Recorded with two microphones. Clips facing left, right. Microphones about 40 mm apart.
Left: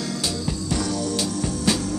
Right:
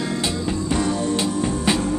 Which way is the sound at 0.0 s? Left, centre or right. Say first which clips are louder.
Right 3 dB; right.